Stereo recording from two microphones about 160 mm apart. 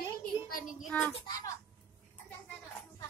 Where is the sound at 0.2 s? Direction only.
55° left (ahead or behind).